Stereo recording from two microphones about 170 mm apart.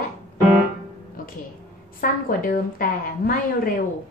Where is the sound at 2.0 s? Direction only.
55° left (ahead or behind).